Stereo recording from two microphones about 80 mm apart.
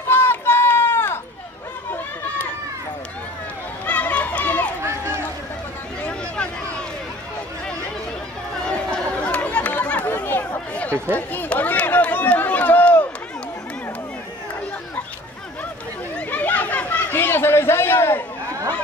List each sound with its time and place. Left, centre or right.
0.0 s run: left
3.8 s run: left
4.8 s run: right
6.0 s a sound: centre
8.6 s chatter: centre
11.1 s run: left
16.2 s chatter: left